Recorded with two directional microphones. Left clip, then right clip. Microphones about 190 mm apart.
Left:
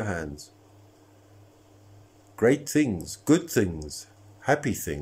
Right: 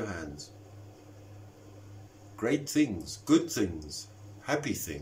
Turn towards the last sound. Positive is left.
turn(degrees=45)  # may be behind; listen again after turning